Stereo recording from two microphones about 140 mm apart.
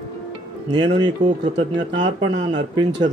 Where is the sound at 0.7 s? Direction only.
30° right (ahead or behind).